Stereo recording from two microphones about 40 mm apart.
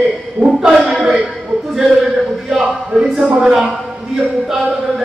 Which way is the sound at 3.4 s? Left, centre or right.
Centre.